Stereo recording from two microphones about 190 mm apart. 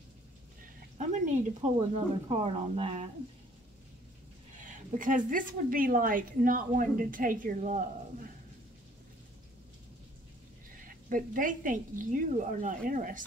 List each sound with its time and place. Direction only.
0.9 s speech: 40° right (ahead or behind)
4.6 s speech: 45° right (ahead or behind)
11.1 s speech: 45° right (ahead or behind)